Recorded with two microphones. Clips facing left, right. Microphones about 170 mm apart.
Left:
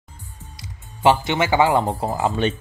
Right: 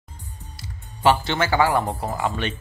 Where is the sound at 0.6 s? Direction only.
20° left (ahead or behind).